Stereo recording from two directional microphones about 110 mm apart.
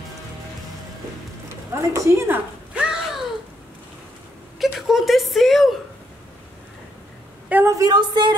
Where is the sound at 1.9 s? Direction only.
25° right (ahead or behind).